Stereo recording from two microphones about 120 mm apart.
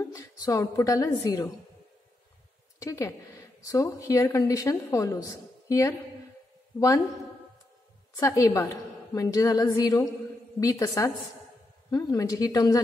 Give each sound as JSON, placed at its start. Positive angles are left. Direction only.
{"t": 0.0, "sound": "a woman's voice", "side_deg": 25}
{"t": 2.8, "sound": "a woman's voice", "side_deg": 25}
{"t": 8.2, "sound": "a woman's voice", "side_deg": 25}